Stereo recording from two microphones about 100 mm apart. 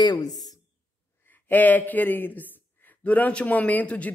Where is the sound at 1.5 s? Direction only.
15° left (ahead or behind).